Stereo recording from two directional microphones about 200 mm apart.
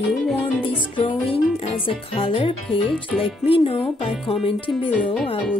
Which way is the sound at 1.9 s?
25° left (ahead or behind).